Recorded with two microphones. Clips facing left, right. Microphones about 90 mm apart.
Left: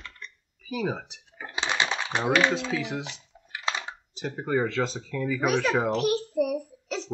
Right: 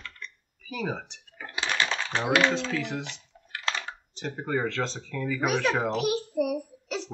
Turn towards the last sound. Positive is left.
turn(degrees=-5)  # may be behind; listen again after turning